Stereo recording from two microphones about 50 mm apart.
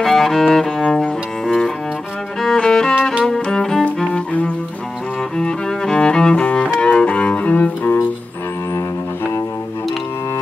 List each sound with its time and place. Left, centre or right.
0.0 s music: centre
1.4 s cello: centre
2.4 s music: centre
5.4 s music: centre
6.8 s cello: left